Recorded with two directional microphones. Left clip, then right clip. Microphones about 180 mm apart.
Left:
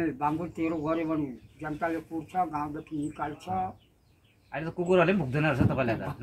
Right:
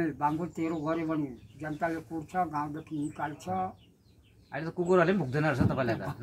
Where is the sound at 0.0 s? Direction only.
10° right (ahead or behind).